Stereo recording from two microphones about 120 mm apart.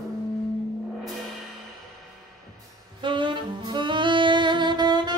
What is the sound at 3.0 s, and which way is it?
Saxophone, 45° right (ahead or behind).